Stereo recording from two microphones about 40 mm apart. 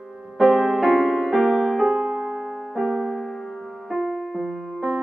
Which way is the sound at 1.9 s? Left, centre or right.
Centre.